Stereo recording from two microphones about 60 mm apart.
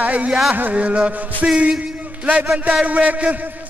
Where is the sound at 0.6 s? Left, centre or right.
Right.